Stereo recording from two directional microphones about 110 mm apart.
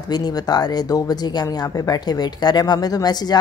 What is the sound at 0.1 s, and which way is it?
Speech, 40° left (ahead or behind).